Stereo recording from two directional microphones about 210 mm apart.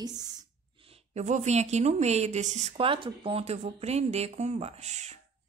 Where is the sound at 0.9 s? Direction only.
30° right (ahead or behind).